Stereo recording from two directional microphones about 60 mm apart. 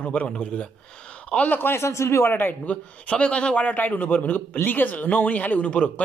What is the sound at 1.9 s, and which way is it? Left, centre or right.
Speech, left.